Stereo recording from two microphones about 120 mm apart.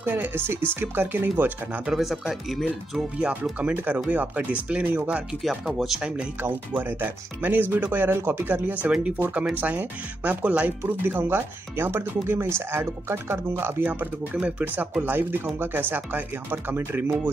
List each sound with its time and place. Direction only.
0.0 s speech: 15° right (ahead or behind)
1.9 s speech: 5° right (ahead or behind)
5.4 s speech: centre (ahead or behind); by 17.3 s 20° right (ahead or behind)